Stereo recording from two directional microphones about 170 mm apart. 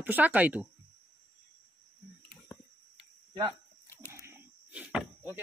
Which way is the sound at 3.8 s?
15° left (ahead or behind).